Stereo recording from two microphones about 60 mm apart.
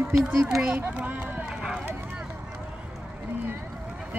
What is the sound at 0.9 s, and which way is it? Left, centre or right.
Run, right.